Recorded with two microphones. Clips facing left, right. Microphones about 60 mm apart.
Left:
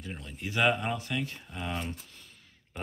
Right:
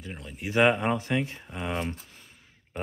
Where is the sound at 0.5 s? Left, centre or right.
Right.